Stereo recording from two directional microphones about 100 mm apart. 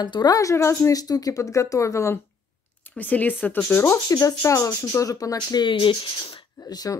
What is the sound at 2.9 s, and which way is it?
Speech, 15° left (ahead or behind).